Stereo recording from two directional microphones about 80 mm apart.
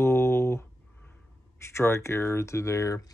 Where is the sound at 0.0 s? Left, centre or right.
Left.